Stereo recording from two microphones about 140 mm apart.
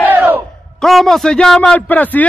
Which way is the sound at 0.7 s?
Centre (ahead or behind).